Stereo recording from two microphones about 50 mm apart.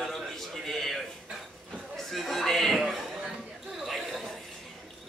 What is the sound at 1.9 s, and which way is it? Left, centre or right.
Chatter, centre.